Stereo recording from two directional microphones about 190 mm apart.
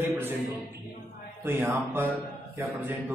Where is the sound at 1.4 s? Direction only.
10° right (ahead or behind).